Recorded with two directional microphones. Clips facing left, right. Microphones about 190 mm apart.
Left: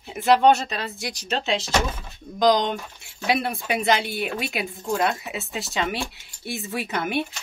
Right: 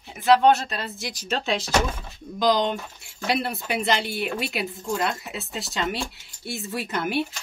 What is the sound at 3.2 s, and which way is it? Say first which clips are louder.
Speech: left 2 dB; centre (ahead or behind).